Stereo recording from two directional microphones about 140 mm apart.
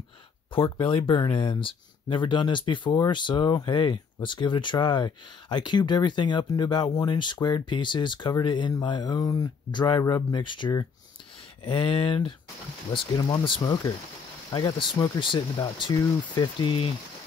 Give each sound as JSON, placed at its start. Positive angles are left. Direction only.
{"t": 0.7, "sound": "speech", "side_deg": 35}